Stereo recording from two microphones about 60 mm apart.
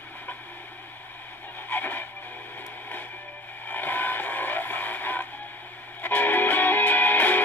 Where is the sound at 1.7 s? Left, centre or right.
Left.